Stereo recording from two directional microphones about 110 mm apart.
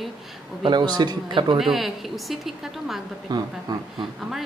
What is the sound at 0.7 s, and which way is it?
Speech, 40° right (ahead or behind).